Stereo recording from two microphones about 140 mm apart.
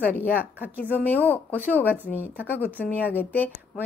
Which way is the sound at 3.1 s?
15° left (ahead or behind).